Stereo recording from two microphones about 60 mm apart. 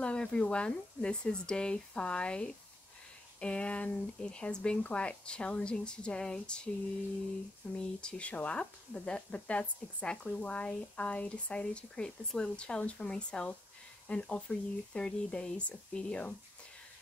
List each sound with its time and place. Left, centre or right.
0.0 s speech: centre
7.7 s speech: centre